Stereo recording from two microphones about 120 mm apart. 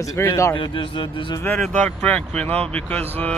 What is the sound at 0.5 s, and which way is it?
Speech, 45° left (ahead or behind).